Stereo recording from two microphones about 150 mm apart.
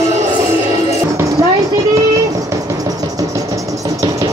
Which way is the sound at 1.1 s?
20° right (ahead or behind).